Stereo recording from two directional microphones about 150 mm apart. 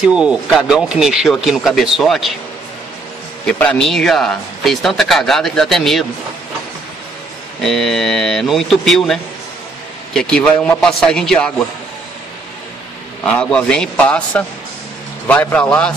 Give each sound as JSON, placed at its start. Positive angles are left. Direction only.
{"t": 0.0, "sound": "speech", "side_deg": -5}
{"t": 3.4, "sound": "speech", "side_deg": 5}
{"t": 7.6, "sound": "speech", "side_deg": 0}
{"t": 13.2, "sound": "a man's voice", "side_deg": 10}